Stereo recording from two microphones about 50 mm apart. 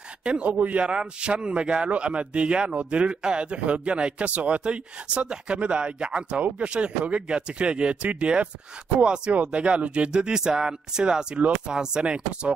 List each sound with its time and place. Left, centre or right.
0.2 s a man's voice: right